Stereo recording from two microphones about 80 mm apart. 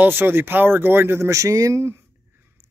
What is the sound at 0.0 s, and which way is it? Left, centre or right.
Speech, right.